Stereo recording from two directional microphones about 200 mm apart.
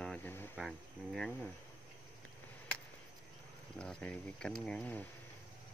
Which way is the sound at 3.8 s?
5° left (ahead or behind).